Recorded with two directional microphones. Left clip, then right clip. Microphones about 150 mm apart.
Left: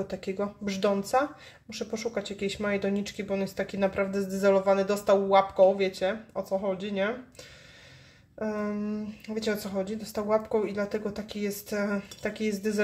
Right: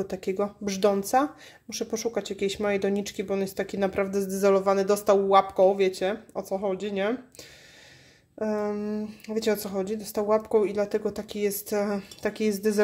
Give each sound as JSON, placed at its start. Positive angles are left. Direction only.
{"t": 0.0, "sound": "speech", "side_deg": -50}
{"t": 8.4, "sound": "speech", "side_deg": -60}